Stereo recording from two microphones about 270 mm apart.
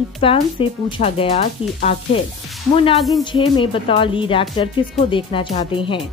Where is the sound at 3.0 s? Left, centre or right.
Centre.